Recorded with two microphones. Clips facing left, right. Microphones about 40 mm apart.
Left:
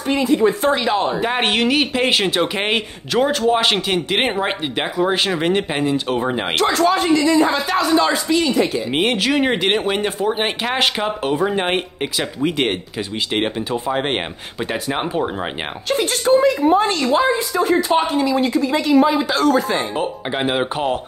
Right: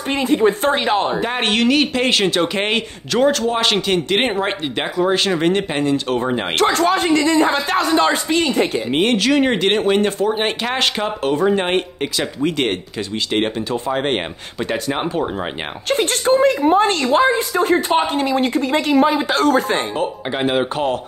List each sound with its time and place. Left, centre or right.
0.1 s a woman's voice: right
1.2 s speech: centre
6.6 s a woman's voice: right
8.9 s speech: centre
15.9 s a woman's voice: right
20.0 s speech: centre